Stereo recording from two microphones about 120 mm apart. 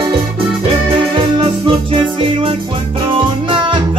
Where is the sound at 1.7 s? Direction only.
45° right (ahead or behind).